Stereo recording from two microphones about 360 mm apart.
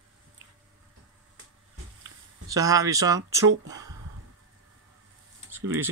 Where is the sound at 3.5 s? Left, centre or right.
Right.